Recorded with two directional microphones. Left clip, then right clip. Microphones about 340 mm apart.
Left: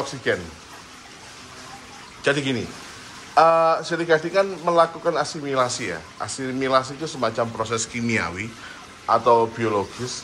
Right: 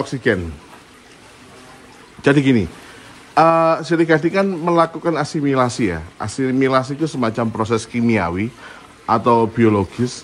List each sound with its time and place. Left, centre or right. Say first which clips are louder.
0.0 s speech: right 5 dB; centre
2.2 s speech: right 7 dB; centre